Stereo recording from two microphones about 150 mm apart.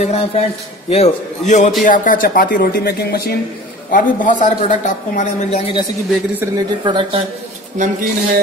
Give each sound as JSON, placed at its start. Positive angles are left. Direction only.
{"t": 0.0, "sound": "a man's voice", "side_deg": 45}
{"t": 1.8, "sound": "speech", "side_deg": 65}
{"t": 3.9, "sound": "a man's voice", "side_deg": 60}
{"t": 6.4, "sound": "speech", "side_deg": -25}
{"t": 7.7, "sound": "speech", "side_deg": -60}